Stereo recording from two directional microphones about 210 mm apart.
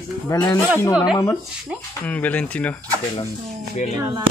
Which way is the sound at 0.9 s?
5° right (ahead or behind).